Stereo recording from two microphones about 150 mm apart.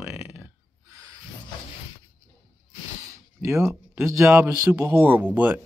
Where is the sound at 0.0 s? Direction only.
15° right (ahead or behind).